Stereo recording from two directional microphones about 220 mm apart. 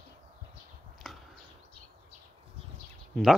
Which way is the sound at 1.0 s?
Centre (ahead or behind).